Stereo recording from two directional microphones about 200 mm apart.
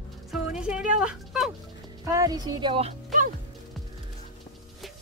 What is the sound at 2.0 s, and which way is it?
Speech, 15° right (ahead or behind).